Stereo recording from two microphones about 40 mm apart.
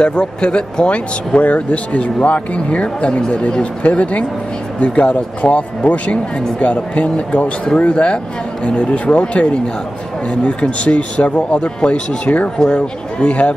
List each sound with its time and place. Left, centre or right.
0.0 s speech: left
6.6 s speech: left
12.5 s speech: left